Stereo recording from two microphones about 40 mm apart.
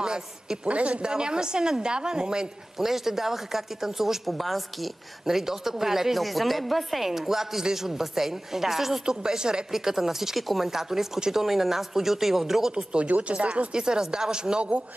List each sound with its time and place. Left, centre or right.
0.0 s a woman's voice: right
0.7 s speech: right
1.0 s a woman's voice: right
9.0 s a woman's voice: centre
12.7 s a woman's voice: right
13.7 s a woman's voice: centre